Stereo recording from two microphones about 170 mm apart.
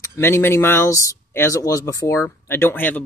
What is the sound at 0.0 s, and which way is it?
Speech, 15° left (ahead or behind).